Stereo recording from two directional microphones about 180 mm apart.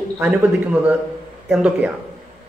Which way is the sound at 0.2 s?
5° right (ahead or behind).